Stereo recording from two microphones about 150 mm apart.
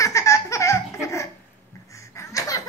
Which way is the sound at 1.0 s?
20° left (ahead or behind).